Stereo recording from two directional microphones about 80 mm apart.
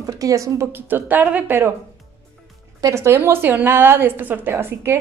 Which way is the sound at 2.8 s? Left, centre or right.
Right.